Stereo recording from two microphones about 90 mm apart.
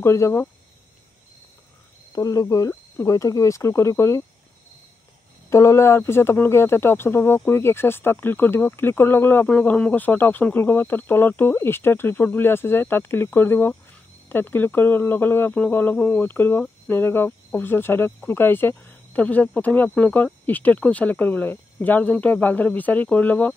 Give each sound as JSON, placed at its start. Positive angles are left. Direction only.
{"t": 0.0, "sound": "speech", "side_deg": 30}
{"t": 2.1, "sound": "speech", "side_deg": 40}
{"t": 5.5, "sound": "speech", "side_deg": 30}